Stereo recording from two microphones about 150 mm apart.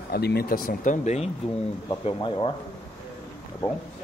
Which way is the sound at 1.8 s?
35° left (ahead or behind).